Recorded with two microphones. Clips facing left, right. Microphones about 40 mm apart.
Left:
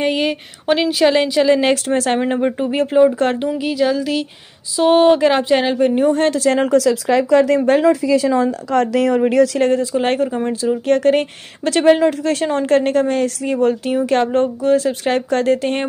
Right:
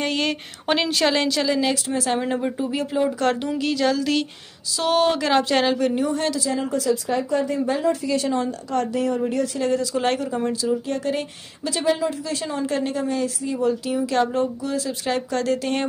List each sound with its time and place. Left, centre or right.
0.0 s a sound: centre
1.5 s a woman's voice: left
2.1 s speech: left
3.0 s speech: left
3.4 s a sound: centre
4.7 s speech: left
6.0 s speech: left
6.5 s speech: left
8.8 s speech: left
9.6 s a woman's voice: left
10.9 s a woman's voice: left